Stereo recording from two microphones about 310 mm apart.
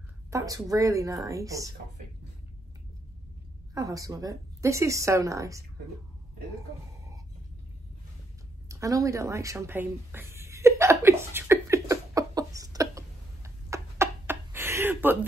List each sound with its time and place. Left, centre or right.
0.3 s a woman's voice: centre
3.7 s a woman's voice: centre
8.6 s a sound: centre